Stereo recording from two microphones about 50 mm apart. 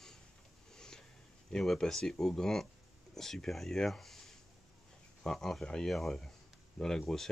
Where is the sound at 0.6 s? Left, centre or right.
Centre.